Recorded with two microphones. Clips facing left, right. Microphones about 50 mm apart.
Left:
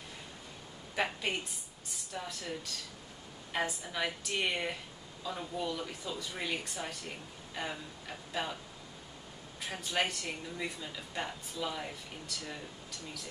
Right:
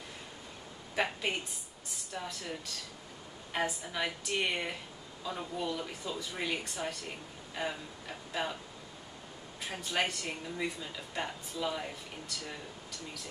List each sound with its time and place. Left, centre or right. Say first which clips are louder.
0.9 s a woman's voice: right 1 dB; centre
3.5 s a woman's voice: right 1 dB; centre
9.7 s a woman's voice: even; centre